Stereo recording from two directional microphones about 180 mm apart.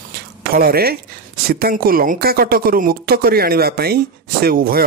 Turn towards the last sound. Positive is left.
turn(degrees=-55)  # may be behind; listen again after turning